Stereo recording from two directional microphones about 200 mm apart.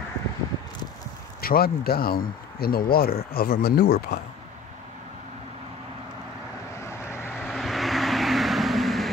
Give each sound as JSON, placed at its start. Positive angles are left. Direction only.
{"t": 1.4, "sound": "speech", "side_deg": 50}
{"t": 6.8, "sound": "vehicle", "side_deg": 15}
{"t": 7.3, "sound": "vehicle", "side_deg": 0}